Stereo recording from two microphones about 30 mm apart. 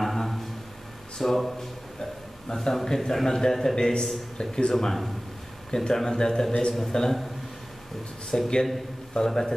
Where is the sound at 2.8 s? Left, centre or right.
Centre.